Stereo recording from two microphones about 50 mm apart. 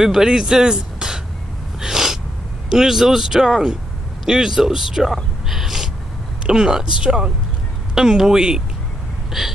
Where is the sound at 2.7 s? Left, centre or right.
Centre.